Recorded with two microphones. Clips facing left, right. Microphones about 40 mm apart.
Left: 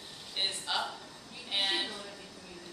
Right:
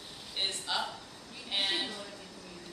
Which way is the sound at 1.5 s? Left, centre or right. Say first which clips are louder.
Left 1 dB; centre.